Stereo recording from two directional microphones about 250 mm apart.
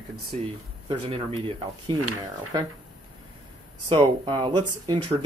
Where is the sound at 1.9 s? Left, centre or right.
Right.